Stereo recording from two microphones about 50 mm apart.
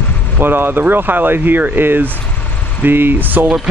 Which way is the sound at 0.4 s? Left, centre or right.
Right.